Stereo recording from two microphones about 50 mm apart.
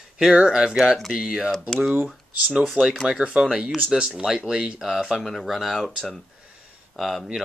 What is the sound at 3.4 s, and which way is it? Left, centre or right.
Speech, centre.